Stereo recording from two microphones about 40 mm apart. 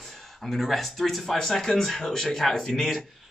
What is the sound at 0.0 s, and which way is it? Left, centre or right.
Speech, centre.